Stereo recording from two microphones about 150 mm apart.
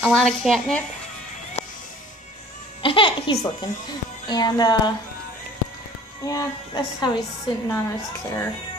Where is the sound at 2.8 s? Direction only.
35° left (ahead or behind).